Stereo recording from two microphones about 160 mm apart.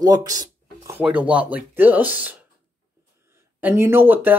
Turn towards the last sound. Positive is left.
turn(degrees=-15)  # may be behind; listen again after turning